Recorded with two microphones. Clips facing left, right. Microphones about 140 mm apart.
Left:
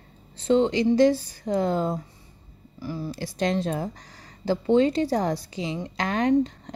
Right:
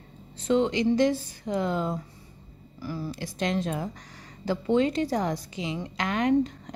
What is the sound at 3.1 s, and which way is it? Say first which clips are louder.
A woman's voice: left 4 dB; 35° left (ahead or behind).